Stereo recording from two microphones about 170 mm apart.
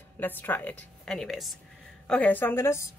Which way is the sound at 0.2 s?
10° left (ahead or behind).